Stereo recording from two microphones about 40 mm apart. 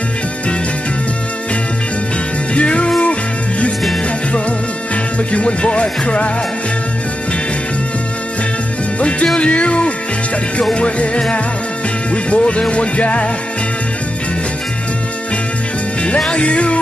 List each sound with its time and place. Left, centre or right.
2.5 s music: left
5.3 s speech: left
9.0 s speech: left
12.1 s music: left
16.2 s music: left